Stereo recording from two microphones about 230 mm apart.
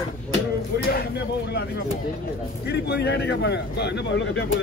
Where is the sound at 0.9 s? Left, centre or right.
Left.